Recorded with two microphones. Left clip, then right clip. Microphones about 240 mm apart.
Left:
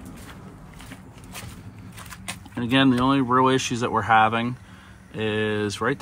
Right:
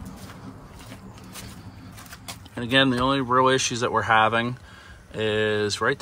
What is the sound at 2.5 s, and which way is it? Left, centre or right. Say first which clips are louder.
Speech: even; centre.